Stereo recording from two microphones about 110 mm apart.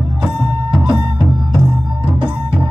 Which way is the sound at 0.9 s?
45° right (ahead or behind).